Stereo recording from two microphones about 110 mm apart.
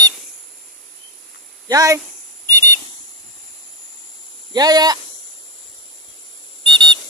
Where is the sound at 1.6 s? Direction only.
30° right (ahead or behind).